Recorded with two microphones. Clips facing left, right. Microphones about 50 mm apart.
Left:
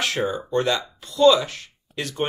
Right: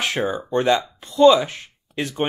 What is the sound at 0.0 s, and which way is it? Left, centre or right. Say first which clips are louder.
Speech: right 1 dB; right.